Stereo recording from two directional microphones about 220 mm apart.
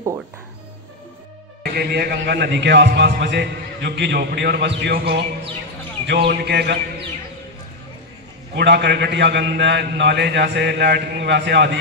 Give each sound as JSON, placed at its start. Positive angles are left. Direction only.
{"t": 1.6, "sound": "a man's voice", "side_deg": -45}
{"t": 8.5, "sound": "a man's voice", "side_deg": -50}